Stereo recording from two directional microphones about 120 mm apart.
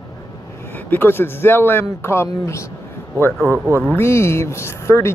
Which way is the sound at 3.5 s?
20° right (ahead or behind).